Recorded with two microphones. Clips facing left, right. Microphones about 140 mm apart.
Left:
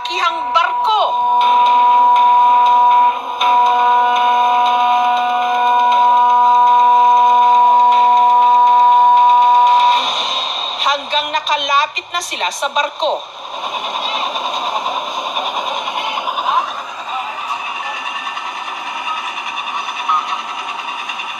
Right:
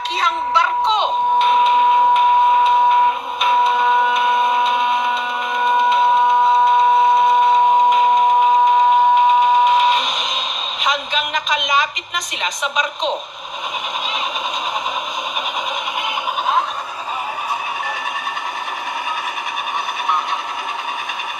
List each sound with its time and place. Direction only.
0.2 s music: centre (ahead or behind)
1.5 s a sound: 40° left (ahead or behind)
12.4 s a woman's voice: 40° left (ahead or behind)